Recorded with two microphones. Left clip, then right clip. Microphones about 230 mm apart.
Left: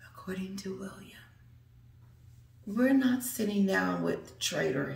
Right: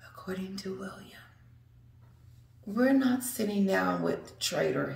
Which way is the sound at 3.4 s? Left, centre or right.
Centre.